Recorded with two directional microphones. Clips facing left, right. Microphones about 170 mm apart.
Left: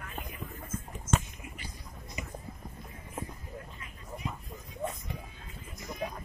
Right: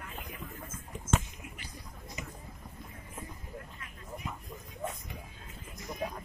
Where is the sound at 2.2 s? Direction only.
15° left (ahead or behind).